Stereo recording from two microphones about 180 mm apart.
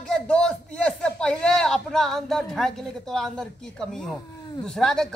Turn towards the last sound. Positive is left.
turn(degrees=5)  # may be behind; listen again after turning